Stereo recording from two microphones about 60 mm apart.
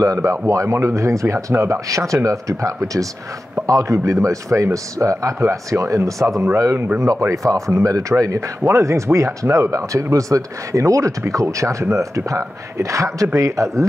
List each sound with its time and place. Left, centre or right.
0.0 s speech: right
7.7 s speech: right
8.1 s speech: right